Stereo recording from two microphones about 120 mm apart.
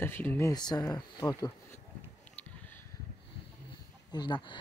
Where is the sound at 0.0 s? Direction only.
15° left (ahead or behind).